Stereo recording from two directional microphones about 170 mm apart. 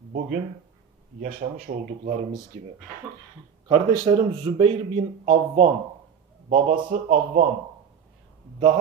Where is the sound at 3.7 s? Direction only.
30° right (ahead or behind).